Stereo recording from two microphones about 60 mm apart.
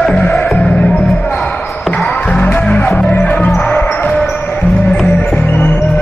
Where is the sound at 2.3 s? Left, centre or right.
Left.